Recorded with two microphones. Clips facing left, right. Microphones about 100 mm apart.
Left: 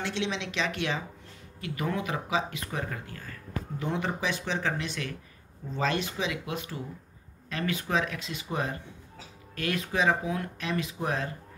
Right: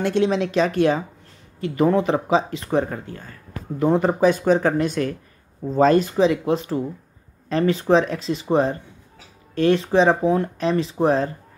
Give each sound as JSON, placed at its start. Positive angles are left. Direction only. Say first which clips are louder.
{"t": 0.0, "sound": "speech", "louder": "right 12 dB", "side_deg": -45}
{"t": 3.8, "sound": "speech", "louder": "right 14 dB", "side_deg": -40}